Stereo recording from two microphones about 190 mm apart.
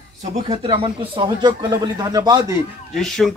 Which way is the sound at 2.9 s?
Centre (ahead or behind).